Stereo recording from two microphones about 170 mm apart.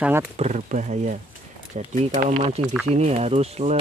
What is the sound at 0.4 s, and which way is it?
Speech, 45° right (ahead or behind).